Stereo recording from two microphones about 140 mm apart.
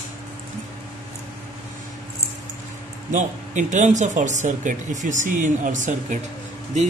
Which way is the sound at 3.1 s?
60° right (ahead or behind).